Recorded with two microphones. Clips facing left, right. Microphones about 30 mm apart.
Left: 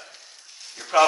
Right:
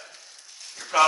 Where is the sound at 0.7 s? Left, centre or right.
Centre.